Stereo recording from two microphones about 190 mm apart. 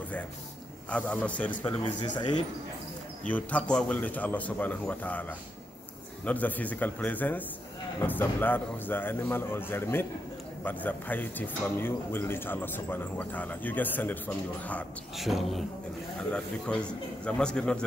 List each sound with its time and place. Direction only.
0.8 s speech: 5° left (ahead or behind)
2.0 s speech: 25° left (ahead or behind)
3.3 s speech: 5° left (ahead or behind)
6.2 s a man's voice: 10° left (ahead or behind)